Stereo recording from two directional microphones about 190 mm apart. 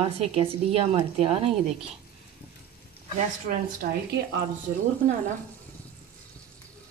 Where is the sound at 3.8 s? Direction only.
50° right (ahead or behind).